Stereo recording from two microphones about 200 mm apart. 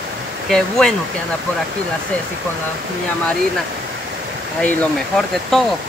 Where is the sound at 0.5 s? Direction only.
5° left (ahead or behind).